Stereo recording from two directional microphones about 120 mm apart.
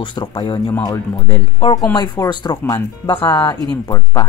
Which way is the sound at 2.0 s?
35° left (ahead or behind).